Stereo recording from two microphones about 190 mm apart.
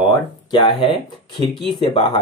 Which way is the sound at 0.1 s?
25° left (ahead or behind).